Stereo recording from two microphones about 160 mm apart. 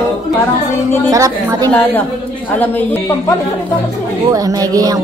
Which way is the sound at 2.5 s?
10° left (ahead or behind).